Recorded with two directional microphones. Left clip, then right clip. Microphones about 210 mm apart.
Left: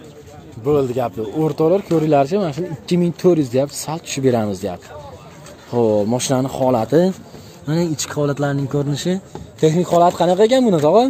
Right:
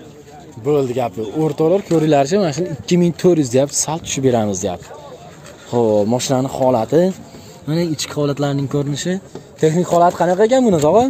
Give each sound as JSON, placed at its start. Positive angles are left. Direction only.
{"t": 0.7, "sound": "speech", "side_deg": -5}
{"t": 2.0, "sound": "speech", "side_deg": -15}
{"t": 8.9, "sound": "speech", "side_deg": 15}
{"t": 9.6, "sound": "speech", "side_deg": -5}